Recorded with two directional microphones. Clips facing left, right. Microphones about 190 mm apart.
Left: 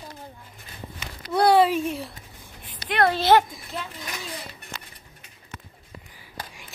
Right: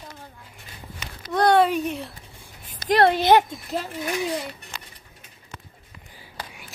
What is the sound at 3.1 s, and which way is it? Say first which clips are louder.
Speech: left 1 dB; 15° right (ahead or behind).